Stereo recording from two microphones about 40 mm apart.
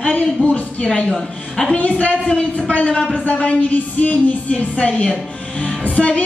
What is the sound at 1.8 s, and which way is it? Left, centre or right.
Speech, left.